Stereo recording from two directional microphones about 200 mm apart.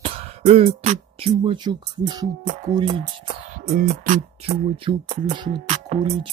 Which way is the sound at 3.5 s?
35° right (ahead or behind).